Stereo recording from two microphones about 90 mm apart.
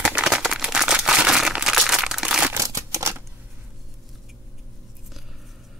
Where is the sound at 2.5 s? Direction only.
35° right (ahead or behind).